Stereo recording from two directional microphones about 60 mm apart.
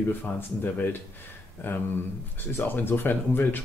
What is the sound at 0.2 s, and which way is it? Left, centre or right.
Speech, left.